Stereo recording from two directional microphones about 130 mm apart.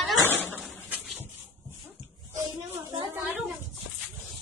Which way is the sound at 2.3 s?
20° right (ahead or behind).